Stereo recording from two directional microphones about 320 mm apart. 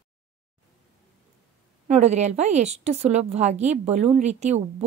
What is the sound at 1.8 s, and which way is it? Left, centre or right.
A woman's voice, right.